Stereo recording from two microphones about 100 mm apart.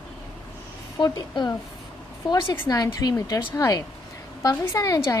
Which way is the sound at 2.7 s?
40° left (ahead or behind).